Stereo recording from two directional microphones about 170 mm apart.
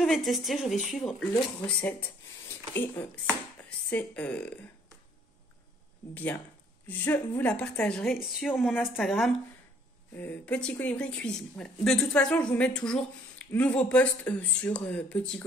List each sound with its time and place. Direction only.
0.0 s a woman's voice: centre (ahead or behind)
6.9 s a woman's voice: 10° left (ahead or behind)